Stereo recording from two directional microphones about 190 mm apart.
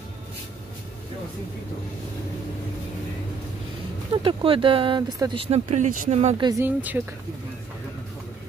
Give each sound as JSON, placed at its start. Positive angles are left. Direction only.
{"t": 4.2, "sound": "speech", "side_deg": -25}
{"t": 6.3, "sound": "speech", "side_deg": -15}